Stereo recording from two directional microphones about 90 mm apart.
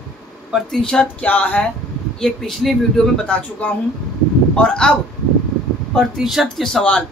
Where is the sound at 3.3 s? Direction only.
15° left (ahead or behind).